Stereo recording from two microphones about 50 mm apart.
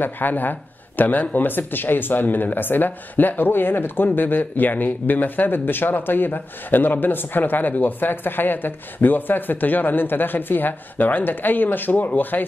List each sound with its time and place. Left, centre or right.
0.0 s speech: left